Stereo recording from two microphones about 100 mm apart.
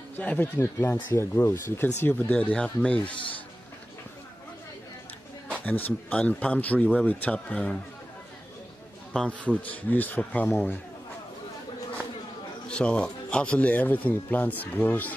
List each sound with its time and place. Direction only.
0.2 s speech: 15° left (ahead or behind)
0.6 s speech: 25° left (ahead or behind); by 3.0 s 10° left (ahead or behind)
5.7 s speech: 15° left (ahead or behind)
9.1 s speech: 10° left (ahead or behind)
12.6 s speech: 10° left (ahead or behind)